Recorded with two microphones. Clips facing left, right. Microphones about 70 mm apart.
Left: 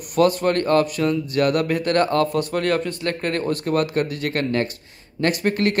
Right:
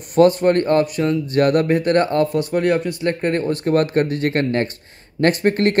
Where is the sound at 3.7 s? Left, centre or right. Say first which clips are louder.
Right 5 dB; right.